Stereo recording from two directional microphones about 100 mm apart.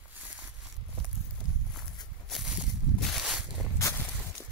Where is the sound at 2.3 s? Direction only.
5° right (ahead or behind).